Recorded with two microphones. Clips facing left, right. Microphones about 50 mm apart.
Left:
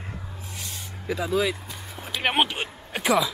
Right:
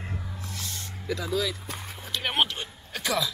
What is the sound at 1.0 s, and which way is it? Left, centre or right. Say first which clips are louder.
Speech: left 4 dB; centre.